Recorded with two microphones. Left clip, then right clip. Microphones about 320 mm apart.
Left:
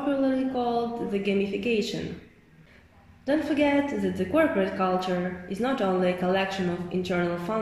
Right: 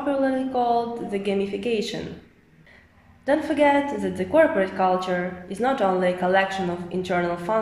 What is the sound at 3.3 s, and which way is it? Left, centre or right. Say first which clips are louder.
A woman's voice: right 5 dB; right.